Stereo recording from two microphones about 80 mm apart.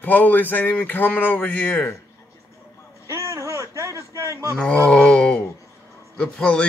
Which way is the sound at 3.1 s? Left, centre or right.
Right.